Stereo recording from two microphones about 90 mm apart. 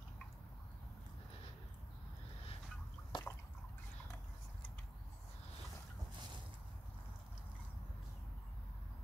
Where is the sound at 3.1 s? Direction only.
60° left (ahead or behind).